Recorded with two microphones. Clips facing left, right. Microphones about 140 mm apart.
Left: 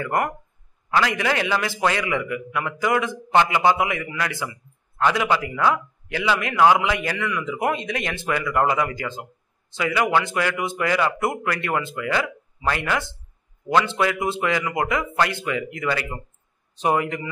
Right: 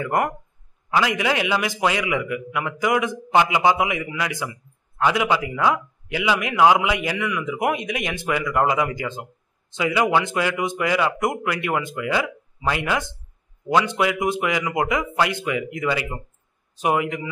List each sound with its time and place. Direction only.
0.0 s a man's voice: 20° right (ahead or behind)